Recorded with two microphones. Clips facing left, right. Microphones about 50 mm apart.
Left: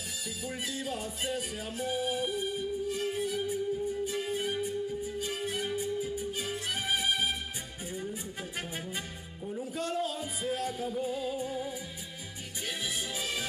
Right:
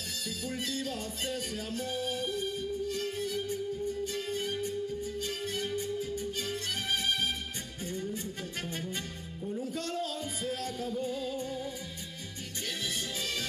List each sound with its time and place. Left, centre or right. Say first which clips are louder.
0.4 s music: right 1 dB; centre